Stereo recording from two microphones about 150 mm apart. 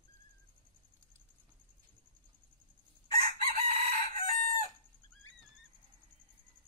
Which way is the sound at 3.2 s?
65° right (ahead or behind).